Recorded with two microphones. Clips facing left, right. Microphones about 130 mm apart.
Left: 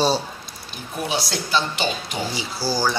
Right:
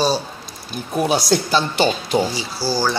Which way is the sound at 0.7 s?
45° right (ahead or behind).